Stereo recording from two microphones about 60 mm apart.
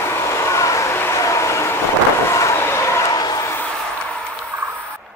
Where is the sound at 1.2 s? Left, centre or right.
Left.